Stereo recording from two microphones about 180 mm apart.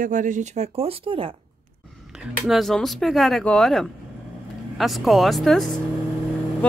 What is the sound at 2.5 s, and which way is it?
Speech, centre (ahead or behind).